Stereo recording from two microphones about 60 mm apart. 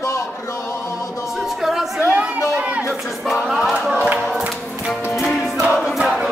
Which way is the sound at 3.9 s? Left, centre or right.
Right.